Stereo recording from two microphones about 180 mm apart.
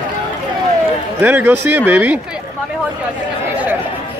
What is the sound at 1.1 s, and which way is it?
Speech, 10° right (ahead or behind).